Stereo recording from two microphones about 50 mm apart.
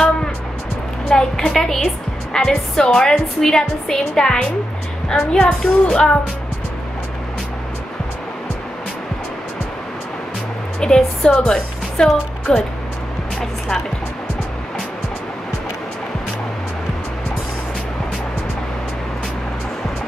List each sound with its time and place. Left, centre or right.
1.0 s music: centre
2.3 s a woman's voice: centre
10.8 s a woman's voice: centre